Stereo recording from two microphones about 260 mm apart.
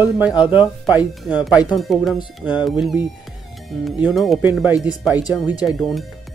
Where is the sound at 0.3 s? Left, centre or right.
Centre.